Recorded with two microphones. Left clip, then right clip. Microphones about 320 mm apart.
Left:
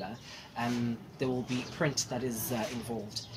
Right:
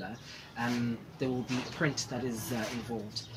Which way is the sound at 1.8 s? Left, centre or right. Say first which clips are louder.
Left 1 dB; left.